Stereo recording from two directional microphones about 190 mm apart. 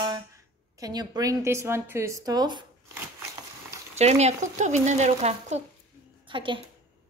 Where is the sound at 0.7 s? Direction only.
20° right (ahead or behind).